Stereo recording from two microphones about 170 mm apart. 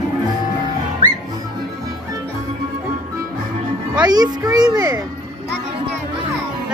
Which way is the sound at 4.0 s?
25° right (ahead or behind).